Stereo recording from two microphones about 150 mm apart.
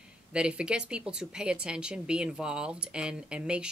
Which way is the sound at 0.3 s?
5° right (ahead or behind).